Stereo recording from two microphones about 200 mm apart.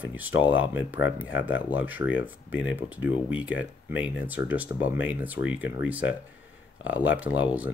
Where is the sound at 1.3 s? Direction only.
75° left (ahead or behind).